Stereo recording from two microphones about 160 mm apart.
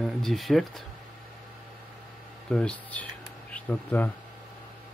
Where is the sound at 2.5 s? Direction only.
5° left (ahead or behind).